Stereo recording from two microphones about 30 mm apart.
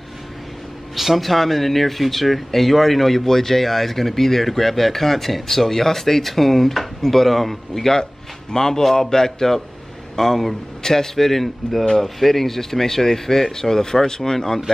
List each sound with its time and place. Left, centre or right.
0.9 s speech: centre
8.0 s speech: left